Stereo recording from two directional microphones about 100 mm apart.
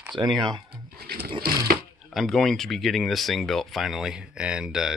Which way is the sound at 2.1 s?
Centre (ahead or behind).